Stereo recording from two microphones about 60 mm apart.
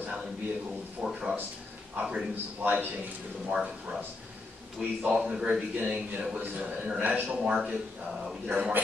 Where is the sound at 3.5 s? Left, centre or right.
Centre; by 7.4 s right.